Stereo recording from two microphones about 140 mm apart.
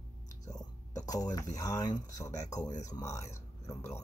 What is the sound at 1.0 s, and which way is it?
Speech, 25° left (ahead or behind).